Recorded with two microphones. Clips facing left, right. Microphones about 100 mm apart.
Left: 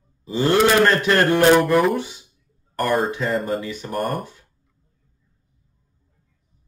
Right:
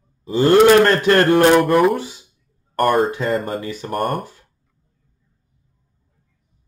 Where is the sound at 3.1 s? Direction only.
50° right (ahead or behind).